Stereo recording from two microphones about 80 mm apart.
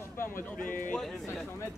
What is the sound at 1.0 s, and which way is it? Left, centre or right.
Speech, centre.